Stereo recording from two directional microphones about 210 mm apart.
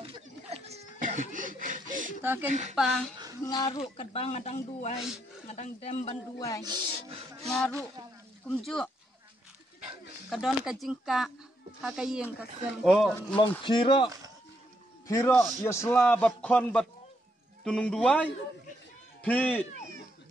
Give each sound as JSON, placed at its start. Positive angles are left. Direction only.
{"t": 0.0, "sound": "a sound", "side_deg": -30}
{"t": 2.2, "sound": "speech", "side_deg": -10}
{"t": 2.7, "sound": "speech", "side_deg": 0}
{"t": 3.4, "sound": "speech", "side_deg": 20}
{"t": 4.9, "sound": "speech", "side_deg": 0}
{"t": 5.5, "sound": "speech", "side_deg": 30}
{"t": 6.6, "sound": "a sound", "side_deg": -20}
{"t": 7.4, "sound": "speech", "side_deg": 0}
{"t": 10.3, "sound": "speech", "side_deg": 0}
{"t": 13.7, "sound": "a man's voice", "side_deg": 20}